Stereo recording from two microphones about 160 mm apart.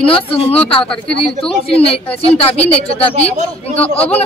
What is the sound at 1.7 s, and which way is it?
Speech, 35° left (ahead or behind).